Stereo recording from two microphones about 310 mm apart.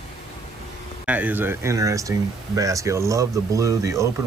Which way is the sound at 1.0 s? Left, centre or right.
Centre.